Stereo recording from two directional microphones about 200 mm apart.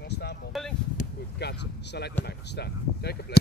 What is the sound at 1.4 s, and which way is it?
Speech, 55° left (ahead or behind).